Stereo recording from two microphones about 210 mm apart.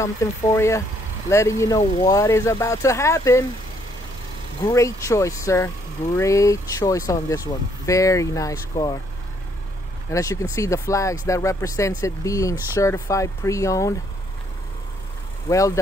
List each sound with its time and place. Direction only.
0.0 s speech: 15° left (ahead or behind)
4.6 s speech: 15° left (ahead or behind)
10.1 s speech: 15° left (ahead or behind)
15.5 s speech: 15° left (ahead or behind)